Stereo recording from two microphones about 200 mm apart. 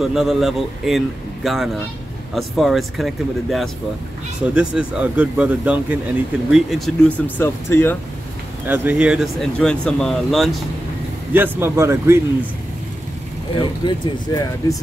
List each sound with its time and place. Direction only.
0.0 s speech: 5° right (ahead or behind)
8.6 s speech: 10° right (ahead or behind)
11.3 s speech: 10° right (ahead or behind)
13.6 s speech: 20° left (ahead or behind)